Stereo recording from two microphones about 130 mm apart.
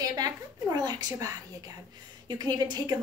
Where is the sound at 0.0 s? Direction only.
30° right (ahead or behind).